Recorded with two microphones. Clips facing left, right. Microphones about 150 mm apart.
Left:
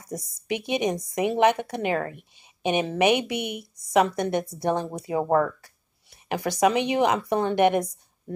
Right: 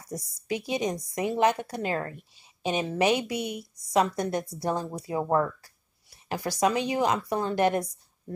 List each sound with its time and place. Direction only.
0.0 s speech: 20° left (ahead or behind)